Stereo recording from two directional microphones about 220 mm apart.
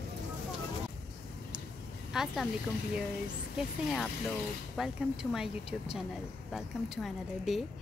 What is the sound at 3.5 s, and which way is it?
Speech, centre (ahead or behind).